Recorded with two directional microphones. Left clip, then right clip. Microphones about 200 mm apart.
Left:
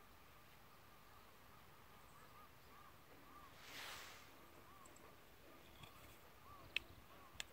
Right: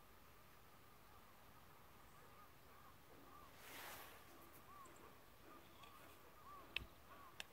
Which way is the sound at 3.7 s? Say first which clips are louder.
Left 3 dB; 20° right (ahead or behind).